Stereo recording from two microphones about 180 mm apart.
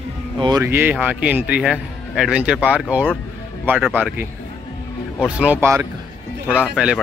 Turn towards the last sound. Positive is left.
turn(degrees=-5)  # may be behind; listen again after turning